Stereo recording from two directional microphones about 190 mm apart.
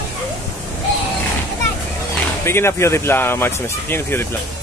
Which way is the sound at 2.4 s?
15° left (ahead or behind).